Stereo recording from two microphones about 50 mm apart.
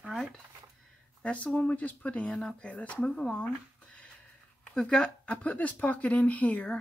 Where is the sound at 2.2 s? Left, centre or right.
Centre.